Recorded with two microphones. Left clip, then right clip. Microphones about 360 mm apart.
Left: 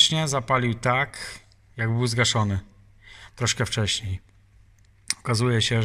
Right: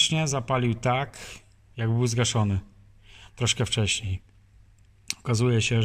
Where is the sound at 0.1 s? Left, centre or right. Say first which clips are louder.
Left 3 dB; centre.